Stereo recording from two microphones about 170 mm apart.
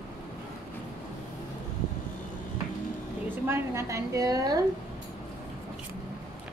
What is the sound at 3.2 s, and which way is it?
A woman's voice, 15° right (ahead or behind).